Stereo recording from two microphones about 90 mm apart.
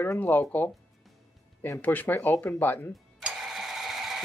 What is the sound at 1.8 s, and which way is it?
Speech, 20° left (ahead or behind).